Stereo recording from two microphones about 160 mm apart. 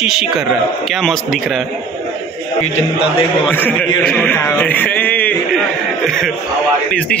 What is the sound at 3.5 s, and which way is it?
Speech, 10° left (ahead or behind).